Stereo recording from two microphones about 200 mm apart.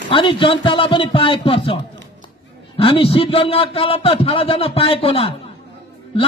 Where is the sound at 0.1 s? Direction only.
25° left (ahead or behind).